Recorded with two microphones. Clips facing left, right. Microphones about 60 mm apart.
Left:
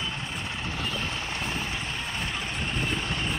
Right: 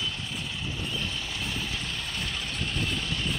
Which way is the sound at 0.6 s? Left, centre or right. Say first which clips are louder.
Left 3 dB; left.